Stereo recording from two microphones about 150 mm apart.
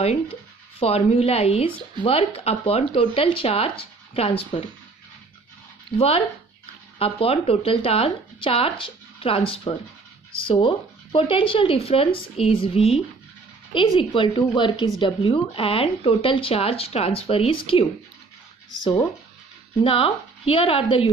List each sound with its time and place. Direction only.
0.7 s speech: 40° left (ahead or behind)
5.9 s speech: 40° left (ahead or behind)
19.8 s speech: 40° left (ahead or behind)